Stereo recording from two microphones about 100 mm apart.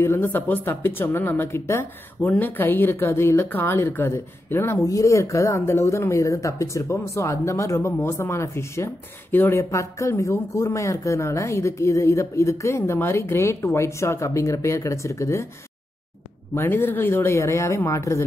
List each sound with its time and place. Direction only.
0.0 s speech: 25° left (ahead or behind)
4.8 s speech: 35° left (ahead or behind)
16.5 s speech: 20° left (ahead or behind)